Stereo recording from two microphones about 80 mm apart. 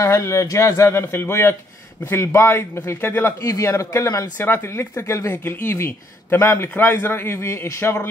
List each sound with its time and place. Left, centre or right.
0.0 s speech: left
3.4 s a man's voice: left
4.4 s speech: left
5.3 s a man's voice: left